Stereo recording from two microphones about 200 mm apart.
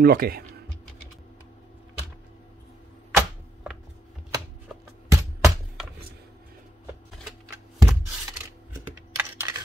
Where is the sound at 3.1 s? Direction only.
5° right (ahead or behind).